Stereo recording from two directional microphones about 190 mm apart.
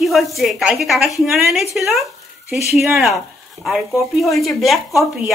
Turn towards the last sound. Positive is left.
turn(degrees=0)  # may be behind; listen again after turning